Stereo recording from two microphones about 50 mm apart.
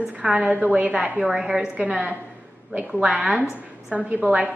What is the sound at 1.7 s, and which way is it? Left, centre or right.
A woman's voice, right.